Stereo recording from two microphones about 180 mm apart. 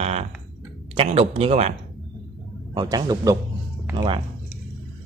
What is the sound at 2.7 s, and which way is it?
Speech, 20° right (ahead or behind).